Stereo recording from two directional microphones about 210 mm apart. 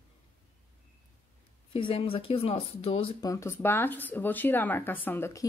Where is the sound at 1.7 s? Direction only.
25° left (ahead or behind).